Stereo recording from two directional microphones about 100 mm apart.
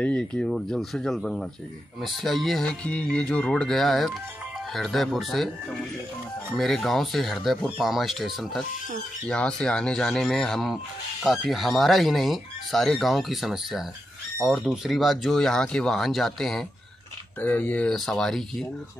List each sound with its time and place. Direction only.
0.0 s speech: 10° left (ahead or behind)
2.8 s speech: 10° left (ahead or behind)
17.4 s speech: 15° left (ahead or behind)
17.9 s speech: 5° left (ahead or behind)